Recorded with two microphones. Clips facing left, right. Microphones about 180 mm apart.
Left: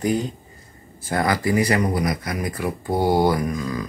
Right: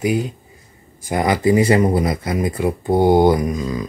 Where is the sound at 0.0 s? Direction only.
10° right (ahead or behind).